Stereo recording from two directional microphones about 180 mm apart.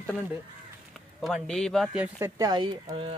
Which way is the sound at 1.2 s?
Centre (ahead or behind).